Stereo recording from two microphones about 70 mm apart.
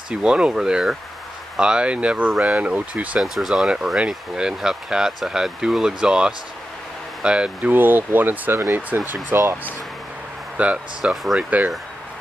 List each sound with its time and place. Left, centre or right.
0.1 s speech: centre
3.2 s speech: centre
7.7 s speech: right
10.6 s speech: centre